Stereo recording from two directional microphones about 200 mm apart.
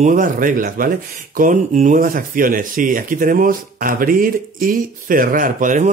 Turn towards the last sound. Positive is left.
turn(degrees=-40)  # may be behind; listen again after turning